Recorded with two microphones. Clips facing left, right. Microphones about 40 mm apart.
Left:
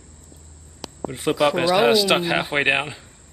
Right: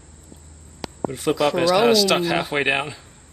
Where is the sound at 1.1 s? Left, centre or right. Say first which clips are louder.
Left 1 dB; centre.